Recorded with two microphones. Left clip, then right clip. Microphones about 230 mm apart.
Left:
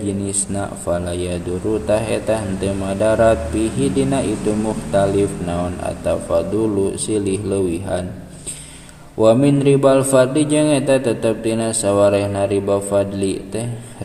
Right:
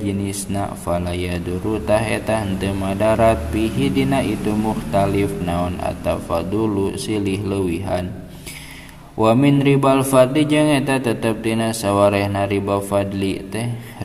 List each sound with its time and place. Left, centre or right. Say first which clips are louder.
0.6 s mantra: even; right
9.2 s mantra: left 2 dB; right